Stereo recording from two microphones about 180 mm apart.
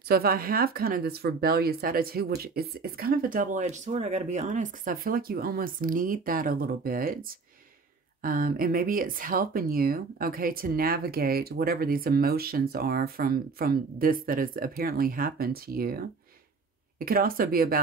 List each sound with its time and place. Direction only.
0.1 s speech: 55° right (ahead or behind)